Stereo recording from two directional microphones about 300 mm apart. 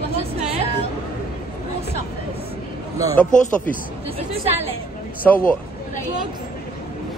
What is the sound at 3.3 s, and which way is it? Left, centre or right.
Speech, left.